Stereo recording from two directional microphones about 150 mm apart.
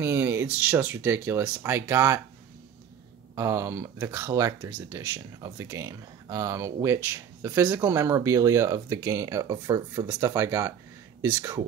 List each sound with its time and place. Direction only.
0.0 s speech: 15° right (ahead or behind)
3.3 s speech: 20° right (ahead or behind)